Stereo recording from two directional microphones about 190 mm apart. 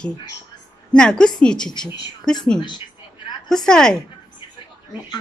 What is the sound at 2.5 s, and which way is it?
Speech, 25° left (ahead or behind).